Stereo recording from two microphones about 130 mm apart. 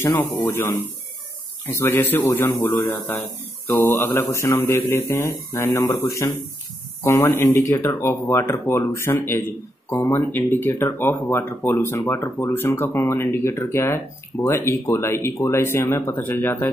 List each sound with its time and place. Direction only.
0.0 s speech: 15° left (ahead or behind)
1.7 s speech: 15° left (ahead or behind)